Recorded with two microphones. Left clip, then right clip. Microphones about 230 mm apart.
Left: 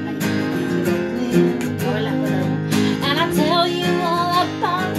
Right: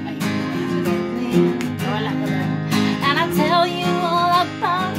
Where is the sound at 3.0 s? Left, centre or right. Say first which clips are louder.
Right 2 dB; right.